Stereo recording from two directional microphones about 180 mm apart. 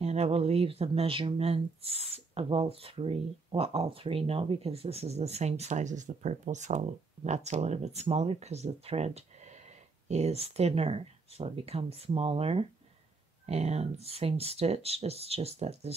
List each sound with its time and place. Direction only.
0.0 s speech: 35° right (ahead or behind)